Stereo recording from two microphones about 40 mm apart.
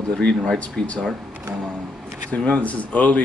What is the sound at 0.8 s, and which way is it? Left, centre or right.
Speech, left.